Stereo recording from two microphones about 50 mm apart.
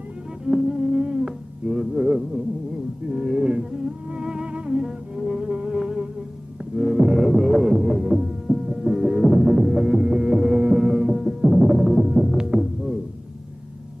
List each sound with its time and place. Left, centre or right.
0.5 s humming: centre
3.1 s music: centre